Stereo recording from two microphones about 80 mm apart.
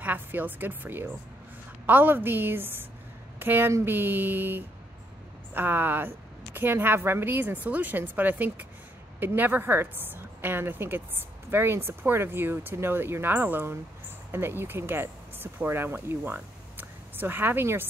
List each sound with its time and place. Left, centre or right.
0.0 s a woman's voice: right